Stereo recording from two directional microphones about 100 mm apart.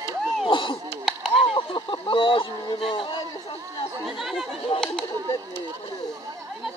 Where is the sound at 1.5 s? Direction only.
55° left (ahead or behind).